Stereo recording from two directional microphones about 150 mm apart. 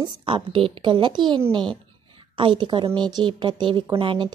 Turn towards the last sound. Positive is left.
turn(degrees=-35)  # may be behind; listen again after turning